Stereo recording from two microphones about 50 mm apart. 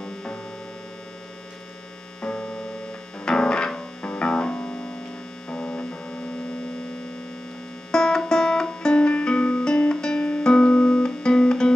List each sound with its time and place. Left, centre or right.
0.0 s hum: centre
2.2 s hum: centre
3.3 s music: centre
5.5 s hum: left
7.9 s music: centre
9.7 s music: centre